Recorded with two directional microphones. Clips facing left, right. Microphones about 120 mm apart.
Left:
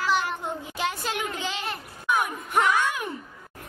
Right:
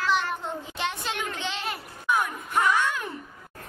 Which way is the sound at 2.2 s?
15° left (ahead or behind).